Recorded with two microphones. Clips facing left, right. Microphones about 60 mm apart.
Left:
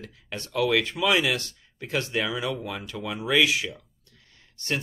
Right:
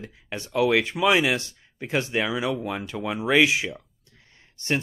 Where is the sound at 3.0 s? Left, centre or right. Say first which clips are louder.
Right 3 dB; right.